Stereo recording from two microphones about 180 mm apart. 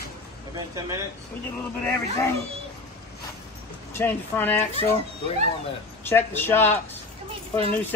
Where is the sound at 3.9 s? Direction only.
10° left (ahead or behind).